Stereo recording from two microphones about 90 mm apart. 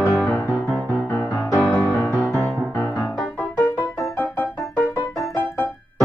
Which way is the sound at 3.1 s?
10° left (ahead or behind).